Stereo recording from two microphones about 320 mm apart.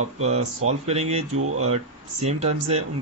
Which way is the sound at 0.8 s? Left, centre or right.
Centre.